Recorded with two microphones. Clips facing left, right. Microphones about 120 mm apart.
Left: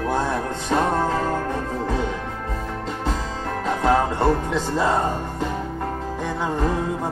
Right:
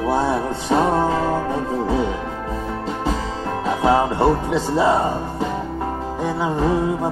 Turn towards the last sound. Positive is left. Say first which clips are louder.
# right 4 dB
turn(degrees=-5)  # may be behind; listen again after turning